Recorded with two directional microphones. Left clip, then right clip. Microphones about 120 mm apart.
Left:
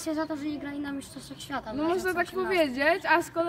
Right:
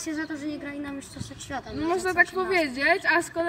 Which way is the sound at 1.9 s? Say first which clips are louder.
Right 8 dB; 45° left (ahead or behind).